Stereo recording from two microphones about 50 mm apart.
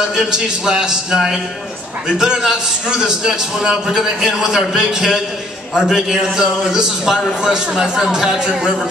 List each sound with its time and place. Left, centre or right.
0.1 s a man's voice: centre